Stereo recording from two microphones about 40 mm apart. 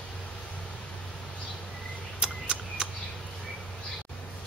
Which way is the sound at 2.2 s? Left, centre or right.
Right.